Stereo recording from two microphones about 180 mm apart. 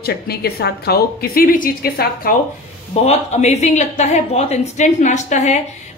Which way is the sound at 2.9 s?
35° left (ahead or behind).